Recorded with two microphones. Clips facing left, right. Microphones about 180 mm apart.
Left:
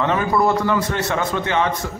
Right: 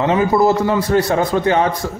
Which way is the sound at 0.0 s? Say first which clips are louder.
Right 4 dB; 30° right (ahead or behind).